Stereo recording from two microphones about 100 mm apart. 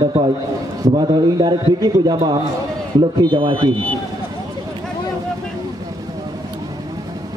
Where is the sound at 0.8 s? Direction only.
45° right (ahead or behind).